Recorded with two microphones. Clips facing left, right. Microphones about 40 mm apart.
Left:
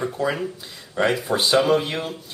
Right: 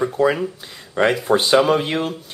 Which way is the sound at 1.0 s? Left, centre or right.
Right.